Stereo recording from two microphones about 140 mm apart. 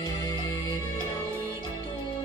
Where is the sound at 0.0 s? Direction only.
25° left (ahead or behind).